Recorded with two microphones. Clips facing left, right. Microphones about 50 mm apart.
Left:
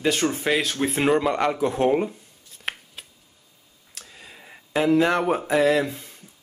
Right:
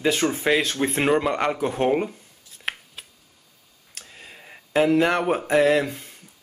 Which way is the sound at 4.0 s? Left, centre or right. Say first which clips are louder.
Right 1 dB; centre.